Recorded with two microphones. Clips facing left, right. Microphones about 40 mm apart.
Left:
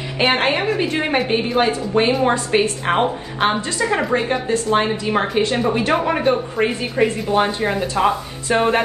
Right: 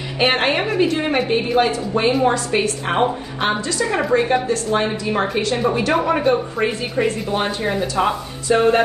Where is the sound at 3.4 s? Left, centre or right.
Left.